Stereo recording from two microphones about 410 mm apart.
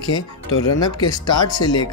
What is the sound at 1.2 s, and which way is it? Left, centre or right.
Speech, left.